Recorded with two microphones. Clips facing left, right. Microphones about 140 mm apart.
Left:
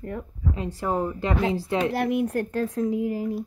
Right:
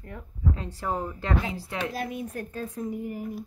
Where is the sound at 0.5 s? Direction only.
15° left (ahead or behind).